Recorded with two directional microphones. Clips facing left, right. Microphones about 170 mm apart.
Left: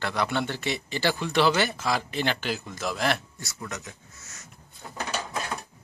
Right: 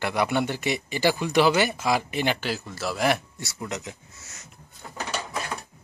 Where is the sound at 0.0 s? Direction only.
15° right (ahead or behind).